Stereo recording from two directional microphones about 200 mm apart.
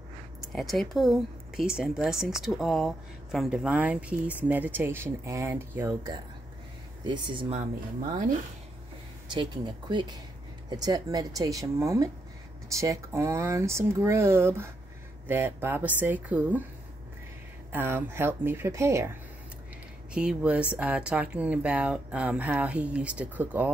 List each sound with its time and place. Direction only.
0.5 s speech: centre (ahead or behind)
7.1 s speech: 25° right (ahead or behind)
9.3 s speech: 25° right (ahead or behind); by 16.6 s 5° right (ahead or behind)
17.7 s speech: 10° right (ahead or behind)
20.2 s speech: 5° right (ahead or behind)